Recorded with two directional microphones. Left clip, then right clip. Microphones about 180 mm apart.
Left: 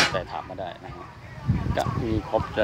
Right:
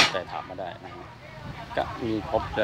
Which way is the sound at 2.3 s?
5° left (ahead or behind).